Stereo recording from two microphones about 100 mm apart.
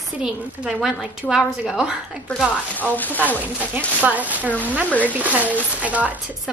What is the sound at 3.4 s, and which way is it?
Speech, 15° right (ahead or behind).